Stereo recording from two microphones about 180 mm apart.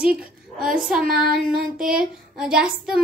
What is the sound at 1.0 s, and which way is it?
Female singing, 55° right (ahead or behind).